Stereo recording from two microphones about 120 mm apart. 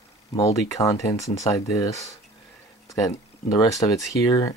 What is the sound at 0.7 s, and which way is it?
Speech, 25° left (ahead or behind).